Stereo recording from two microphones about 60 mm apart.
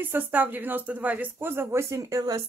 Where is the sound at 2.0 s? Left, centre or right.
Right.